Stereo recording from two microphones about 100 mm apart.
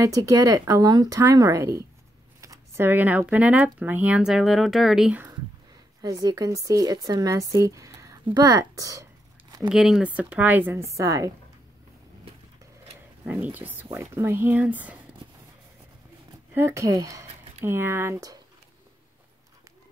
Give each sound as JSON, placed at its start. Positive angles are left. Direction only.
{"t": 0.0, "sound": "speech", "side_deg": -35}
{"t": 6.0, "sound": "speech", "side_deg": -35}
{"t": 9.7, "sound": "speech", "side_deg": -5}
{"t": 10.0, "sound": "speech", "side_deg": -15}
{"t": 13.3, "sound": "speech", "side_deg": -15}
{"t": 16.5, "sound": "speech", "side_deg": -30}